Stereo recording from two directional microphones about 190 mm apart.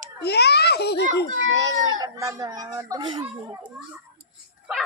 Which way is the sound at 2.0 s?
15° right (ahead or behind).